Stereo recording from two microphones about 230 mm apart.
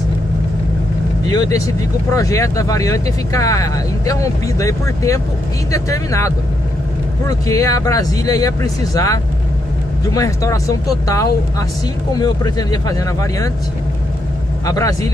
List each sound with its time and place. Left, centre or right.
1.3 s speech: centre
14.7 s speech: centre